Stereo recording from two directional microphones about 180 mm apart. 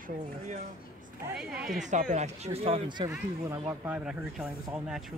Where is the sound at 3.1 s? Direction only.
20° right (ahead or behind).